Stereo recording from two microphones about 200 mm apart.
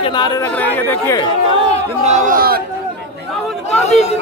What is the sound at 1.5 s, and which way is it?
Speech, 35° right (ahead or behind).